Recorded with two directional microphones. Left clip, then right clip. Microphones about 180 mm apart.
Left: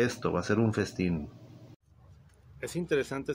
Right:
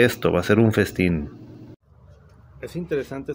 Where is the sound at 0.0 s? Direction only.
25° right (ahead or behind).